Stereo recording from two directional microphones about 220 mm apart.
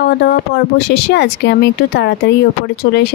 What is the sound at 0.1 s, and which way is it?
Speech, 45° left (ahead or behind).